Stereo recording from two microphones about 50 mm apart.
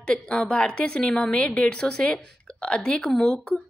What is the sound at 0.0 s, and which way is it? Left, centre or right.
A woman's voice, left.